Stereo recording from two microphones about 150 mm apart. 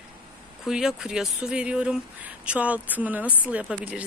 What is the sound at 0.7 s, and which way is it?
Speech, 5° right (ahead or behind).